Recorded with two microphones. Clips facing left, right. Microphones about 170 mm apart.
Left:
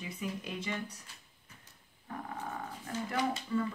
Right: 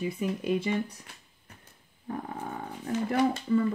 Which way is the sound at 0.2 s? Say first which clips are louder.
Right 9 dB; 55° right (ahead or behind).